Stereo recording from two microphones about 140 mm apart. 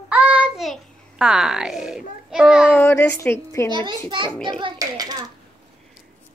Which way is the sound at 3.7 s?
35° right (ahead or behind).